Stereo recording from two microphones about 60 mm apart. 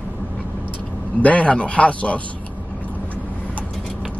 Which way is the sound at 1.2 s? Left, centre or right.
Left.